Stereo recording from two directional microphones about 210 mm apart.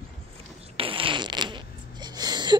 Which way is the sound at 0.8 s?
25° right (ahead or behind).